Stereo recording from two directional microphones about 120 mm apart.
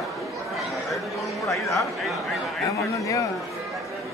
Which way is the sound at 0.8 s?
Centre (ahead or behind).